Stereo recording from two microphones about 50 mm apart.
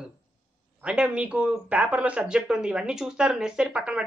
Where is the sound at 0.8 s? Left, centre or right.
Right.